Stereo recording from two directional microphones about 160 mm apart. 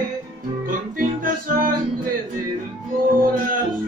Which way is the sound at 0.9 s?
60° right (ahead or behind).